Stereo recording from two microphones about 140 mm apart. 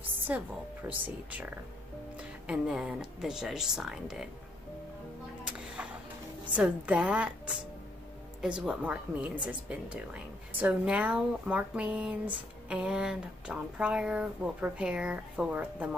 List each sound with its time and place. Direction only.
0.3 s speech: 10° right (ahead or behind)
6.5 s speech: 5° right (ahead or behind)